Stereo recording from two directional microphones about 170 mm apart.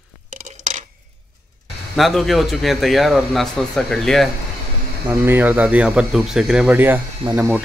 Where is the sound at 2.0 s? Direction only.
Centre (ahead or behind).